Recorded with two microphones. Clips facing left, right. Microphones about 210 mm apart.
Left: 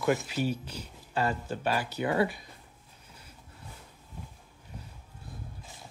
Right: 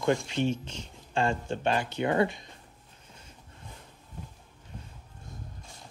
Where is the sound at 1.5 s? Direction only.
25° right (ahead or behind).